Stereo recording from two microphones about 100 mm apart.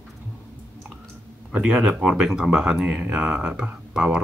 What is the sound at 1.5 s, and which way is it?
Speech, 10° right (ahead or behind).